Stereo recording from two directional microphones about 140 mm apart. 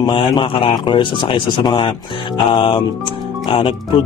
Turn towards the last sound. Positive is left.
turn(degrees=40)  # may be behind; listen again after turning